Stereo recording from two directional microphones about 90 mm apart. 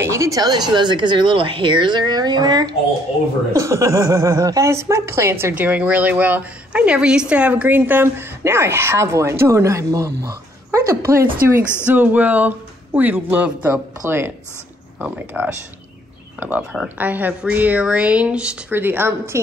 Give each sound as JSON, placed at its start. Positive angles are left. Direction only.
{"t": 0.0, "sound": "speech", "side_deg": -35}
{"t": 3.5, "sound": "speech", "side_deg": -35}
{"t": 5.5, "sound": "a woman's voice", "side_deg": -15}
{"t": 11.8, "sound": "a woman's voice", "side_deg": -20}
{"t": 18.7, "sound": "a woman's voice", "side_deg": -25}